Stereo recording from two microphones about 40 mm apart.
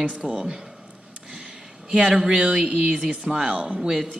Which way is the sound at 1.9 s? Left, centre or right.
Right.